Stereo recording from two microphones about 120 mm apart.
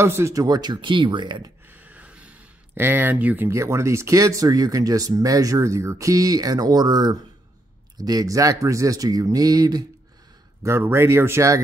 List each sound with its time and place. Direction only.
0.0 s speech: 25° right (ahead or behind); by 1.5 s 40° right (ahead or behind)
1.7 s speech: 15° right (ahead or behind); by 9.8 s 30° right (ahead or behind)
10.6 s speech: 20° right (ahead or behind)